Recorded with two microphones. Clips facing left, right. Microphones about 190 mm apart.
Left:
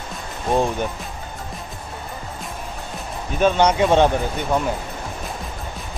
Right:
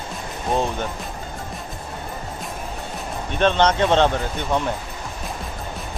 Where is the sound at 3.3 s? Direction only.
10° left (ahead or behind).